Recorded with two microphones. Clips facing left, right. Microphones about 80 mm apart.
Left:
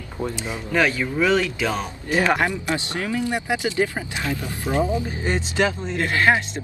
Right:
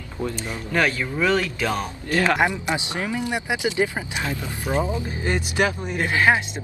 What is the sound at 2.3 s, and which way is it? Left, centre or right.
Speech, centre.